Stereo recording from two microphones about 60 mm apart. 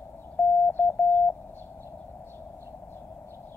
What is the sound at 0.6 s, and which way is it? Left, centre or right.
Radio, left.